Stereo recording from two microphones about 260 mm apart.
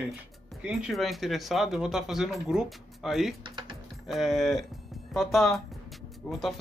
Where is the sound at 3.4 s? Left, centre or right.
Centre.